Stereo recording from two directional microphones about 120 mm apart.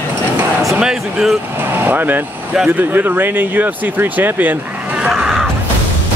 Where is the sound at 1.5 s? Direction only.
15° right (ahead or behind).